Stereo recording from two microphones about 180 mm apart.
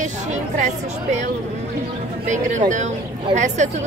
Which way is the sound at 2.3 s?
45° right (ahead or behind).